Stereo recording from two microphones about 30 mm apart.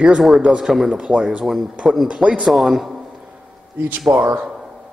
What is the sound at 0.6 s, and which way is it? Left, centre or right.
Speech, centre.